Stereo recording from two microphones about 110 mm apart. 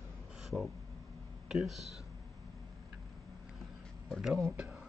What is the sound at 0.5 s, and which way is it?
Speech, centre (ahead or behind).